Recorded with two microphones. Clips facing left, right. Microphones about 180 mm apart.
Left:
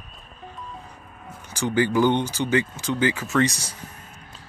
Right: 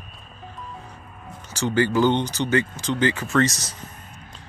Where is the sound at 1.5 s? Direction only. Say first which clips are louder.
Even; 10° left (ahead or behind).